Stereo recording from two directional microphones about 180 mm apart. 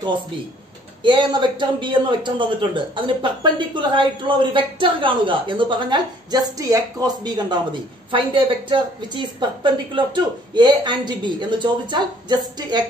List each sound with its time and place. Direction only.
1.0 s a man's voice: 25° right (ahead or behind)